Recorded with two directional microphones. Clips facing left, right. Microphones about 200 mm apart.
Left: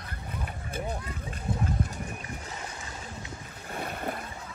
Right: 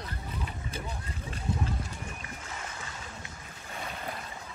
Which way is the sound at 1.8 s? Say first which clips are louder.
Left 8 dB; 55° left (ahead or behind).